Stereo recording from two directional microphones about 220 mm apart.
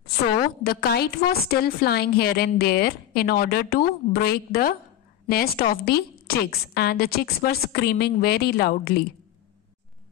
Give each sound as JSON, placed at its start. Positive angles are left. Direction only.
{"t": 0.4, "sound": "a woman's voice", "side_deg": 45}